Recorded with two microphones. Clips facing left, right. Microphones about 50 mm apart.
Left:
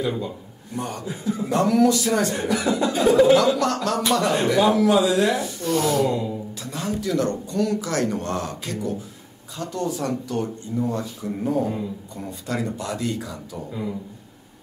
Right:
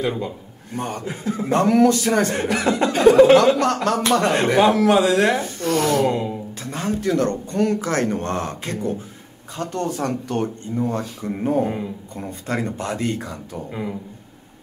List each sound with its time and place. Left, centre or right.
0.7 s speech: right
1.0 s speech: right